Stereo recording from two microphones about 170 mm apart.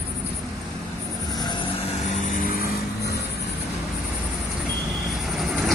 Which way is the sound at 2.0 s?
45° left (ahead or behind).